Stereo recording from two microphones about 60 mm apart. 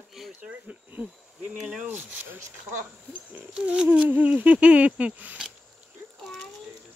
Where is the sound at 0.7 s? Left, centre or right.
Right.